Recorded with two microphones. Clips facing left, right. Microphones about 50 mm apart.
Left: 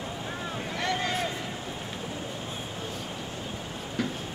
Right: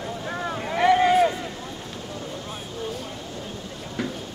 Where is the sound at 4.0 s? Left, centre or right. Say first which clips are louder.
Right 2 dB; centre.